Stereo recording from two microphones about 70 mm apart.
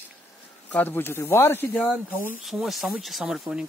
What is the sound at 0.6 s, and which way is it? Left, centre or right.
Speech, left.